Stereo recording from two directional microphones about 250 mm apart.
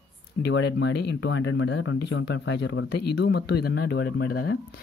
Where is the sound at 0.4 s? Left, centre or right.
Left.